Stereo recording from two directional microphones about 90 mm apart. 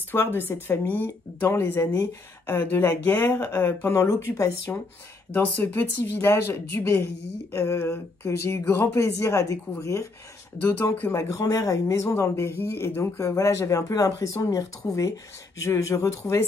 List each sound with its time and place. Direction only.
0.1 s speech: 25° left (ahead or behind)
7.8 s speech: 20° left (ahead or behind)
10.6 s speech: 20° left (ahead or behind)
11.1 s speech: 35° left (ahead or behind)